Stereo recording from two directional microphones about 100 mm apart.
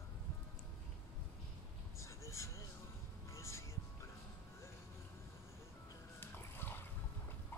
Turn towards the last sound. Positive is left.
turn(degrees=20)  # may be behind; listen again after turning